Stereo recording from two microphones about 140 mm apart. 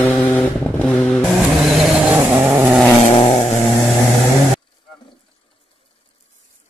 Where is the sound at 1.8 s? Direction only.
10° right (ahead or behind).